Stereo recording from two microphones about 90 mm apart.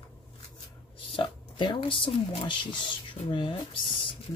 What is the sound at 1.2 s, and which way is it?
Speech, 60° left (ahead or behind).